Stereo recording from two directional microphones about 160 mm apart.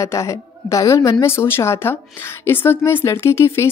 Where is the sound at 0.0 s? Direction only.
20° left (ahead or behind).